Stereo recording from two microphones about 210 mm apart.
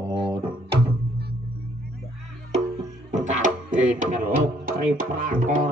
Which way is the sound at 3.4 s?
35° right (ahead or behind).